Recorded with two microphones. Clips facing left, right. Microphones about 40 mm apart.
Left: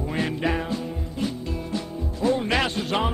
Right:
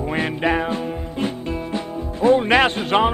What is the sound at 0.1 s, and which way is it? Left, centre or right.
Music, right.